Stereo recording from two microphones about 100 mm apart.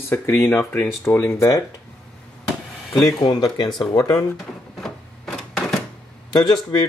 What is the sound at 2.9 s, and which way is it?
Speech, 10° left (ahead or behind).